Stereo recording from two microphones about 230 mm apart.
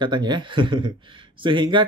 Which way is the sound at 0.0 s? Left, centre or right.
Centre.